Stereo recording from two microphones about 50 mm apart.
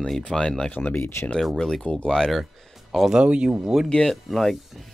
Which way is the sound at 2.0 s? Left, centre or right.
Centre.